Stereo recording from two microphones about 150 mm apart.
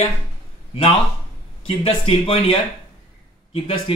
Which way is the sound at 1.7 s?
35° left (ahead or behind).